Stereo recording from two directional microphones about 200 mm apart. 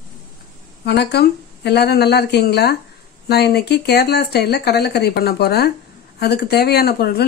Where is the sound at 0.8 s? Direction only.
55° left (ahead or behind).